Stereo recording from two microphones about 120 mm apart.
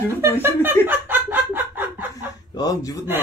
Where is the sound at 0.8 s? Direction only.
15° right (ahead or behind).